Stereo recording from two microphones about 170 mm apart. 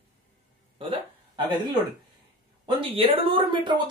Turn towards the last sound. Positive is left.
turn(degrees=-25)  # may be behind; listen again after turning